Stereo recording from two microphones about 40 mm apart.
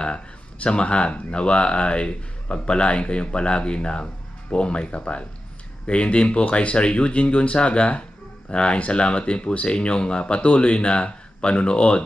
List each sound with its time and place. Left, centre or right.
0.0 s speech: left